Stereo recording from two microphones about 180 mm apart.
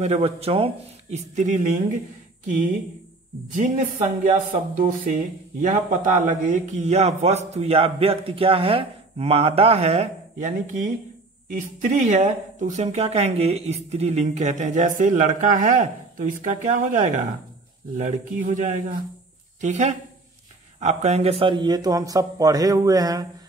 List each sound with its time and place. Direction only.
0.0 s speech: 35° right (ahead or behind)
3.4 s a man's voice: 45° right (ahead or behind); by 23.2 s 20° right (ahead or behind)